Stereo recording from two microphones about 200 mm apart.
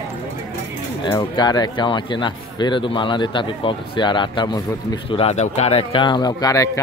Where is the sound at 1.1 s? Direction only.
20° left (ahead or behind).